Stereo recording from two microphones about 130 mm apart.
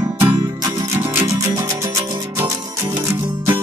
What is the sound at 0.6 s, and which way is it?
Music, 25° right (ahead or behind).